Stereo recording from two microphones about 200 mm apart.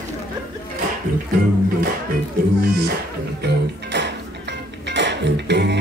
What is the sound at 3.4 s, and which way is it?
Music, 60° right (ahead or behind).